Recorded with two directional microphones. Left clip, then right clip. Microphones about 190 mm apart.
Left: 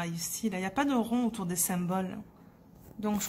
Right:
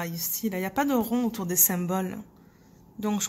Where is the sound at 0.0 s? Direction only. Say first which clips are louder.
Right 3 dB; 15° right (ahead or behind).